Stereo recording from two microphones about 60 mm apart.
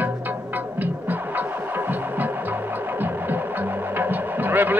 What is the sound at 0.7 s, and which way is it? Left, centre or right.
Music, right.